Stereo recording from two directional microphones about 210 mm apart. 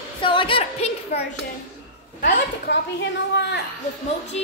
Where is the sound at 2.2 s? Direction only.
50° left (ahead or behind).